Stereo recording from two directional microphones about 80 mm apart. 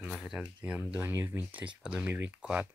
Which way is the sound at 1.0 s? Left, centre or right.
Right.